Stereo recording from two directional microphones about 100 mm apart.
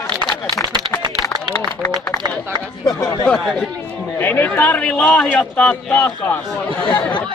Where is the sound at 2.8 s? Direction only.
40° left (ahead or behind).